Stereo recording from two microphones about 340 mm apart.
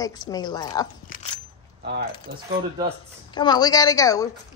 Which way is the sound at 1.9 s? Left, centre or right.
Right.